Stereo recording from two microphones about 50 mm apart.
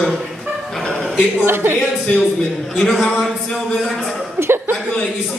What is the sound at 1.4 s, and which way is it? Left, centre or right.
Speech, right.